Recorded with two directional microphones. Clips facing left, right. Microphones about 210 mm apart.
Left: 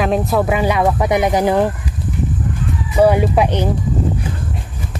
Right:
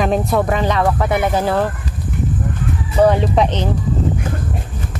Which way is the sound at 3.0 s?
10° left (ahead or behind).